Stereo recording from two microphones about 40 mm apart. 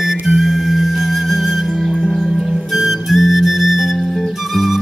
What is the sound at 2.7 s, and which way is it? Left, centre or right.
Flute, centre.